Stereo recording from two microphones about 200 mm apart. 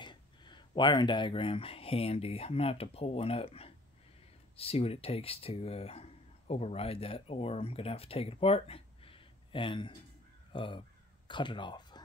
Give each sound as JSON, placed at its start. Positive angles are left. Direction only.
{"t": 0.0, "sound": "speech", "side_deg": 25}